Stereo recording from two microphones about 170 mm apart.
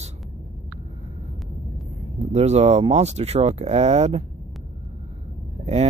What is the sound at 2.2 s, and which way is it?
Speech, 40° right (ahead or behind).